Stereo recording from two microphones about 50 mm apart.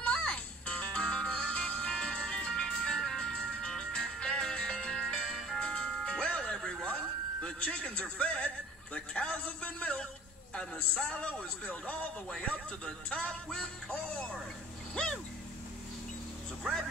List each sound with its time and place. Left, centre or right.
0.0 s music: left
8.9 s a man's voice: left